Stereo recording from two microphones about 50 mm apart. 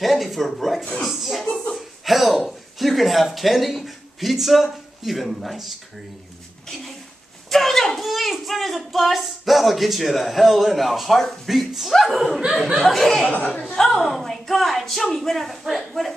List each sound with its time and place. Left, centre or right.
0.0 s a woman's voice: centre
1.0 s a sound: centre
6.7 s speech: centre
12.8 s a woman's voice: centre
13.5 s a woman's voice: left
13.7 s a woman's voice: centre